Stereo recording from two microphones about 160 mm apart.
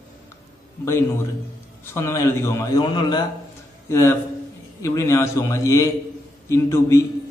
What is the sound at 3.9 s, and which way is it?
A man's voice, 15° left (ahead or behind).